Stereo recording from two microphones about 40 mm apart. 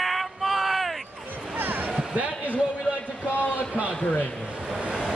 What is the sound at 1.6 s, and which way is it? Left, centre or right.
Basketball bounce, right.